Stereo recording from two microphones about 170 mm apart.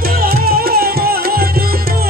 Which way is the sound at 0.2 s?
60° right (ahead or behind).